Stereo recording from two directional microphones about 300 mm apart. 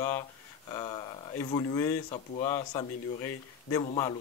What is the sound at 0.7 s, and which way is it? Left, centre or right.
Speech, centre.